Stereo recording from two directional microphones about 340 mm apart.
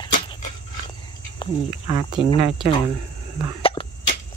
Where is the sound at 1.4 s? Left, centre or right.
Centre.